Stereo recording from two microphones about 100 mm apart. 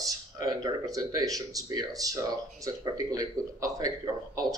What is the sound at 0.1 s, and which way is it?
Speech, 40° right (ahead or behind).